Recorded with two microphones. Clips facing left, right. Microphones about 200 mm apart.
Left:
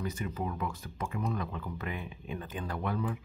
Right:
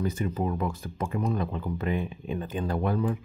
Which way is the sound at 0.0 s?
30° right (ahead or behind).